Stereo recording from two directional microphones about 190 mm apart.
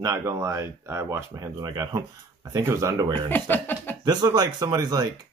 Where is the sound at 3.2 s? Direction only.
10° left (ahead or behind).